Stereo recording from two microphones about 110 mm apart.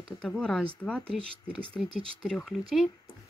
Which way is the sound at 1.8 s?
5° right (ahead or behind).